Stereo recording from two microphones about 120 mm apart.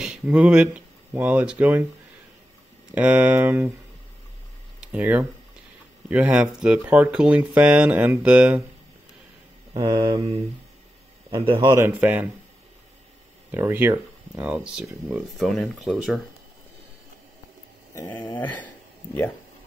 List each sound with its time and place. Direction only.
0.0 s speech: 5° right (ahead or behind)
2.9 s speech: 10° right (ahead or behind)
4.7 s a sound: 15° right (ahead or behind)
6.0 s speech: 10° right (ahead or behind)
9.8 s mantra: 35° right (ahead or behind)
11.6 s speech: 20° right (ahead or behind)
13.5 s speech: 20° right (ahead or behind); by 16.2 s centre (ahead or behind)
17.9 s dog: 25° left (ahead or behind)